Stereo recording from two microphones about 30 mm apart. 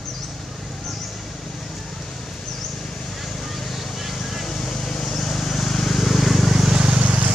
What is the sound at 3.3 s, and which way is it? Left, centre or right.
Vehicle, centre.